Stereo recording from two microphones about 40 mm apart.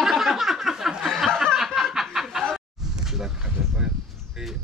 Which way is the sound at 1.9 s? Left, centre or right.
Centre.